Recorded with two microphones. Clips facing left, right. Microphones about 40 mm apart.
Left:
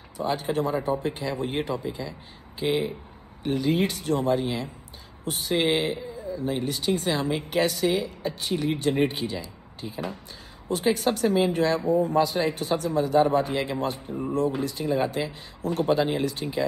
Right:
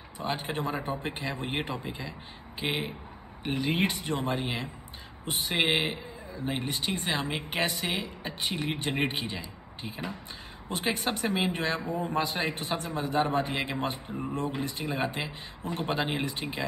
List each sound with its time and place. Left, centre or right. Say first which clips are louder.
0.2 s speech: left 6 dB; right